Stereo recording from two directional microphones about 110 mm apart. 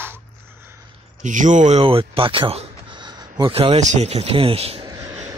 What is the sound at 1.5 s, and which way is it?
Speech, 85° right.